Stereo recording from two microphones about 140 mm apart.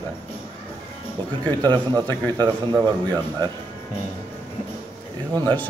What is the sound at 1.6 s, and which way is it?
A man's voice, 30° right (ahead or behind).